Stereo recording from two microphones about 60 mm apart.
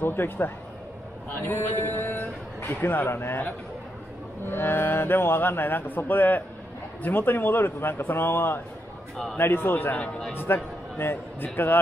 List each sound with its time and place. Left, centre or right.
0.0 s speech: left
1.8 s speech: left
9.1 s speech: centre
9.4 s speech: left
10.3 s a man's voice: left